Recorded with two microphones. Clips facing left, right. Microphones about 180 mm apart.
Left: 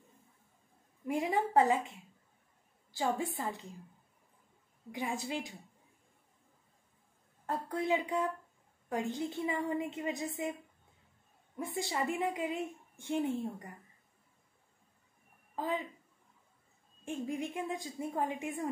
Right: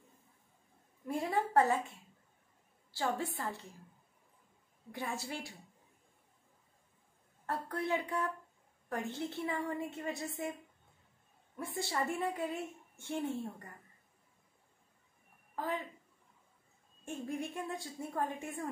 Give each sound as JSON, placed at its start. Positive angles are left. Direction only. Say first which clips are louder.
{"t": 1.2, "sound": "a woman's voice", "louder": "left 1 dB", "side_deg": 15}
{"t": 4.9, "sound": "a woman's voice", "louder": "left 4 dB", "side_deg": 15}
{"t": 7.4, "sound": "a woman's voice", "louder": "left 3 dB", "side_deg": 15}
{"t": 11.5, "sound": "a woman's voice", "louder": "left 1 dB", "side_deg": 15}
{"t": 15.5, "sound": "a woman's voice", "louder": "left 2 dB", "side_deg": 20}
{"t": 17.0, "sound": "a woman's voice", "louder": "left 2 dB", "side_deg": 15}